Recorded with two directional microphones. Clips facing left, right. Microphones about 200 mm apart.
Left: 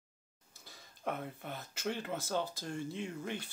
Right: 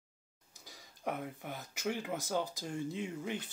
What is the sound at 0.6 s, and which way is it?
Speech, 15° right (ahead or behind).